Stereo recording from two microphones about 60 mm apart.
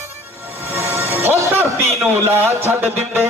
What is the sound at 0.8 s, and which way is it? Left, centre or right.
Music, right.